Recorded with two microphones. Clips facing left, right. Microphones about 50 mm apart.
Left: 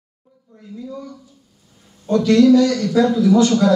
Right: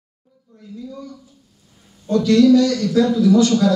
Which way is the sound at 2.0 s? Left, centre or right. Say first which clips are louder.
Left 1 dB; centre.